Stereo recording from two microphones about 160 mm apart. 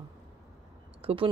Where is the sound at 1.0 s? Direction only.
35° right (ahead or behind).